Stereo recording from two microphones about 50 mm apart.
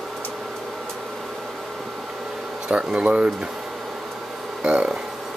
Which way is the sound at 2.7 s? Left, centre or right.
Right.